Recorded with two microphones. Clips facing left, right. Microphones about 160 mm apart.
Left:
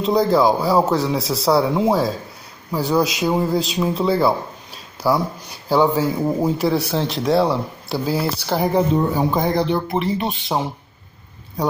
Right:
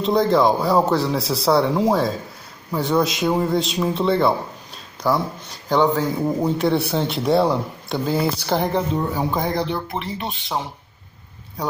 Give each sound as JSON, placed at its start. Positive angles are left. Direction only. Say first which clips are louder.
{"t": 0.0, "sound": "speech", "louder": "left 1 dB", "side_deg": 0}
{"t": 8.9, "sound": "speech", "louder": "left 4 dB", "side_deg": 30}
{"t": 9.8, "sound": "speech", "louder": "left 7 dB", "side_deg": 10}